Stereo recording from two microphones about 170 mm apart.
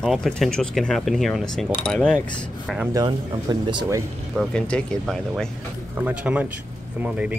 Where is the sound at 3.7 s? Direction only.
20° right (ahead or behind).